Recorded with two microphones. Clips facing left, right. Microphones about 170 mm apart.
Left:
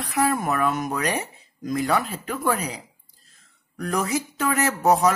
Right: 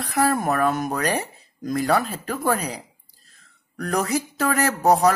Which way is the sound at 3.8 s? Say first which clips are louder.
Right 1 dB; 35° right (ahead or behind).